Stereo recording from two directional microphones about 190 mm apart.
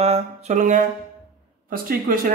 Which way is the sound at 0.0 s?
35° right (ahead or behind).